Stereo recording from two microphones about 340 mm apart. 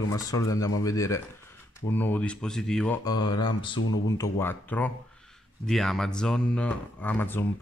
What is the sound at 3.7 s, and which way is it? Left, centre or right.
Speech, left.